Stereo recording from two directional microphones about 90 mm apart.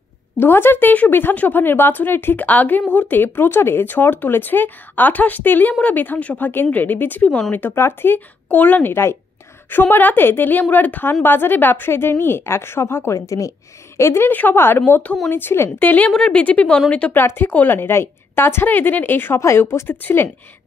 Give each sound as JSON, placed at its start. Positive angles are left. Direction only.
{"t": 0.4, "sound": "a woman's voice", "side_deg": 25}
{"t": 17.2, "sound": "speech", "side_deg": 25}